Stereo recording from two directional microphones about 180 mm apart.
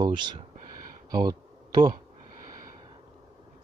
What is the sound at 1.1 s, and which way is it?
Bee, 25° right (ahead or behind).